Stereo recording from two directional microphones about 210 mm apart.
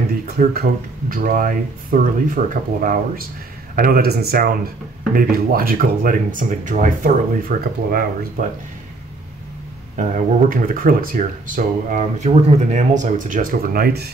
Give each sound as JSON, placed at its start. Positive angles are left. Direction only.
{"t": 1.1, "sound": "speech", "side_deg": -40}
{"t": 9.9, "sound": "speech", "side_deg": -40}